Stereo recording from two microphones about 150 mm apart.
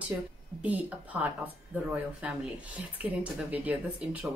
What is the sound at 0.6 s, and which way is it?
Speech, 10° right (ahead or behind).